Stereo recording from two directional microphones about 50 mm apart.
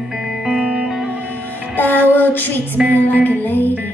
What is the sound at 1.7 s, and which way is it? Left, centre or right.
Child singing, left.